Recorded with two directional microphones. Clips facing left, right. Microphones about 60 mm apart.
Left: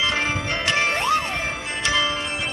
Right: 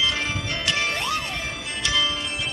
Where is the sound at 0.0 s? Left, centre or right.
Left.